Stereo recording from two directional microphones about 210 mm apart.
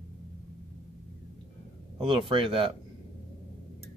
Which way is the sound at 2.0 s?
25° right (ahead or behind).